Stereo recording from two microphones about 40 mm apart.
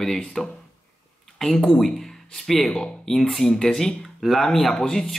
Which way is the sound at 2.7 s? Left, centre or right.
Centre.